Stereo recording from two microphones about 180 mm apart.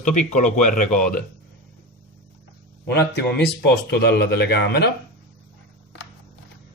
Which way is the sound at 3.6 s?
65° left (ahead or behind).